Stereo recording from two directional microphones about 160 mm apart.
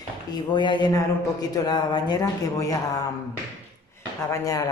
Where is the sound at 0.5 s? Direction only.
30° left (ahead or behind).